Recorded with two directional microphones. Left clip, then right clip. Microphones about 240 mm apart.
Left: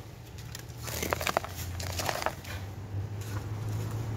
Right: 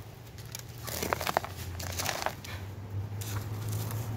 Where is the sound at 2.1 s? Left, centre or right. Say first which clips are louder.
Left 2 dB; centre.